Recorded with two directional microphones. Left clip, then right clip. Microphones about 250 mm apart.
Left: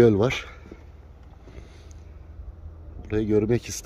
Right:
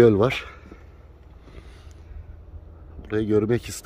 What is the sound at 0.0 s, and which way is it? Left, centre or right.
Speech, centre.